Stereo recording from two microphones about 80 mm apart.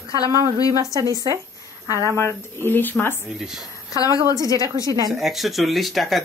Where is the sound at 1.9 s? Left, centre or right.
Left.